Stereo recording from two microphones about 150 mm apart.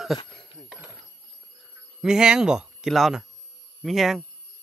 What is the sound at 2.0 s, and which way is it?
Speech, 5° right (ahead or behind).